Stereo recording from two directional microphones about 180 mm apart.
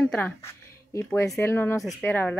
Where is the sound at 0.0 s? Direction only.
10° left (ahead or behind).